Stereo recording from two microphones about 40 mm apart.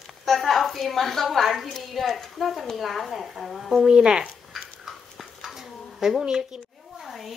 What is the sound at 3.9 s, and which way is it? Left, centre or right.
Speech, right.